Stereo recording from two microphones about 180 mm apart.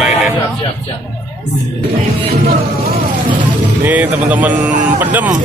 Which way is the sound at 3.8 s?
10° right (ahead or behind).